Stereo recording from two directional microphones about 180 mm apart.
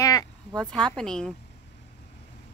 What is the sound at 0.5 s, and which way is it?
Speech, 5° left (ahead or behind).